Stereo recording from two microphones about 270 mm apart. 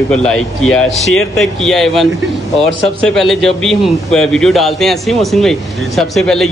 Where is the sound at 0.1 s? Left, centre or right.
Centre.